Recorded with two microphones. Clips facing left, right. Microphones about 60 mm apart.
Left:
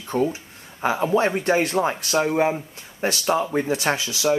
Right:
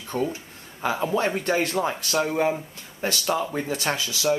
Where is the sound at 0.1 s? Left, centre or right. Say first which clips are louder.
Left 4 dB; centre.